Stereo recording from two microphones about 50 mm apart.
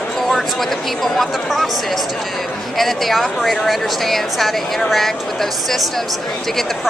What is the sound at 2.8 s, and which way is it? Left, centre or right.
Speech, centre.